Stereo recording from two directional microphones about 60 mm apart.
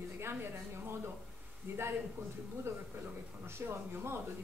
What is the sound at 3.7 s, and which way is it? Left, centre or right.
Speech, right.